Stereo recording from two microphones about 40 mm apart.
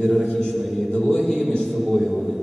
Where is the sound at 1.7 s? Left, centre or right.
Centre.